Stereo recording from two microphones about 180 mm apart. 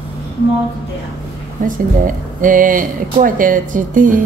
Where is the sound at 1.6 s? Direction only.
50° right (ahead or behind).